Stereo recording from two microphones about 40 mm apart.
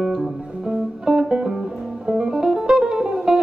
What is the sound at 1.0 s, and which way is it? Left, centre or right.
Music, centre.